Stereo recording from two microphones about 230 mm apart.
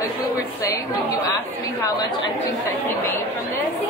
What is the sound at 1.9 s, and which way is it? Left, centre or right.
Speech, centre.